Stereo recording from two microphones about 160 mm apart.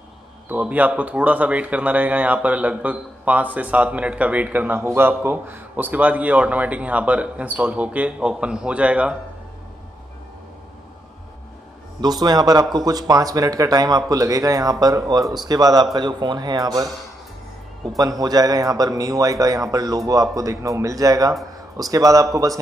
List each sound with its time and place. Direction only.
0.5 s speech: 10° right (ahead or behind)
12.0 s a man's voice: 25° right (ahead or behind)
17.8 s a man's voice: 20° right (ahead or behind)